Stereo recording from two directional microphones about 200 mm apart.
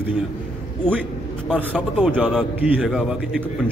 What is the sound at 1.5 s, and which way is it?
A man's voice, 5° right (ahead or behind).